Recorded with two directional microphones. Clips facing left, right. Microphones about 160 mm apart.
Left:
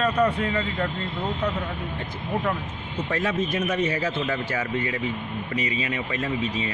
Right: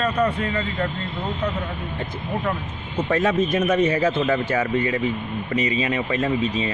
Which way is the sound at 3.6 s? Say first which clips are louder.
Right 6 dB; 50° right (ahead or behind).